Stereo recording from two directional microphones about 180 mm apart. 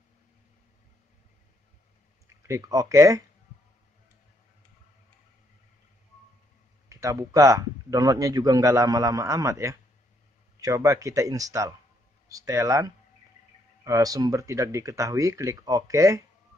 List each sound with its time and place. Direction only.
2.2 s speech: 15° right (ahead or behind)
6.9 s speech: 15° right (ahead or behind)